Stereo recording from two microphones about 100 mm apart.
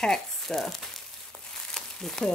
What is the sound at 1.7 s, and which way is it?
Crumpling, 5° left (ahead or behind).